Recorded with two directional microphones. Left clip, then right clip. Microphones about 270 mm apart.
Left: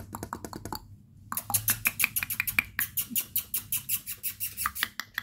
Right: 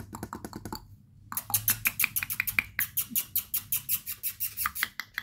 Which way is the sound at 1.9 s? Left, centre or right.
Centre.